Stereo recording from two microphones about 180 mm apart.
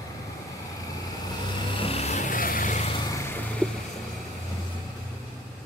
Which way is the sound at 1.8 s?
35° left (ahead or behind).